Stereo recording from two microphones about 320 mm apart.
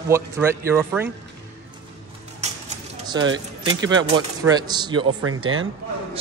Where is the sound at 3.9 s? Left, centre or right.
Centre.